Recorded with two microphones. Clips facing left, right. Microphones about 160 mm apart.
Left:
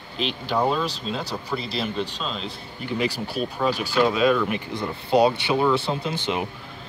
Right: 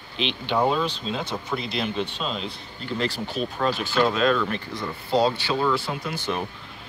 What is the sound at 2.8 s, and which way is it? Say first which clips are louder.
Speech: left 2 dB; 10° left (ahead or behind).